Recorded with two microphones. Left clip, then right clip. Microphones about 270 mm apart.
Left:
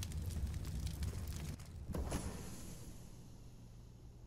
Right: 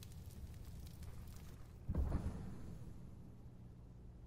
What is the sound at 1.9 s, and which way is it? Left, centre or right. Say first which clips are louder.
Vehicle: left 4 dB; left.